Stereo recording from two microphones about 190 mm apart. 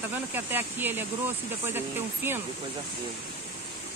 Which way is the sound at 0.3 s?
10° right (ahead or behind).